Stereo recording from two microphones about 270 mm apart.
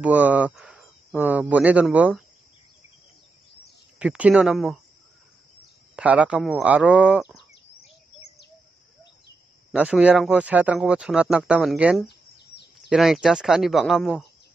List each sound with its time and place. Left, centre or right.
0.0 s speech: centre
4.0 s speech: centre
5.9 s speech: centre
9.7 s speech: centre
12.1 s bird vocalization: left
12.9 s speech: centre